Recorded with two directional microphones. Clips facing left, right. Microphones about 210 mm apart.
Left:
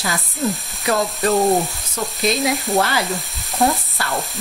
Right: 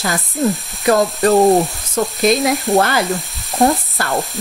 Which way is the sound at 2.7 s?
50° right (ahead or behind).